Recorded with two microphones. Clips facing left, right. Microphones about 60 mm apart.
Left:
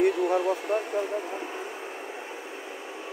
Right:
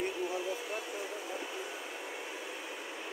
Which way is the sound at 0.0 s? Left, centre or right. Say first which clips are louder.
Left 12 dB; left.